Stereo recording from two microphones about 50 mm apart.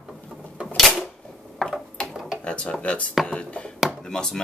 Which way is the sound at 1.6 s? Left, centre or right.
Centre.